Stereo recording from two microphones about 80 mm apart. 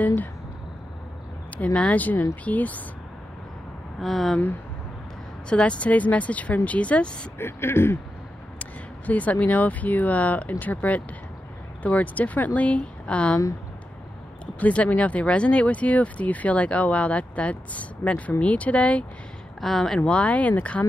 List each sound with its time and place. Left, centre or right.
0.0 s a sound: left
1.6 s speech: centre
4.0 s speech: centre
5.5 s speech: centre
7.3 s speech: left
8.5 s speech: centre
14.4 s speech: centre
19.6 s speech: centre
20.0 s speech: centre